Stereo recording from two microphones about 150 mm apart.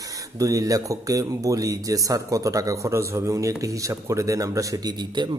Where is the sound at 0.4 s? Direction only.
20° right (ahead or behind).